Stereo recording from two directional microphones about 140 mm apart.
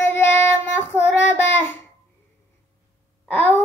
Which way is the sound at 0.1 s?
15° left (ahead or behind).